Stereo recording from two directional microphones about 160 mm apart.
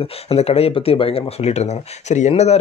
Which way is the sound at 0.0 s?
40° left (ahead or behind).